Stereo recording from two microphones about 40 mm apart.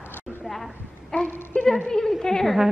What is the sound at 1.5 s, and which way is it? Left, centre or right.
Speech, left.